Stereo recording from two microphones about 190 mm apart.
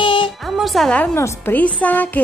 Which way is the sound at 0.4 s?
Centre (ahead or behind).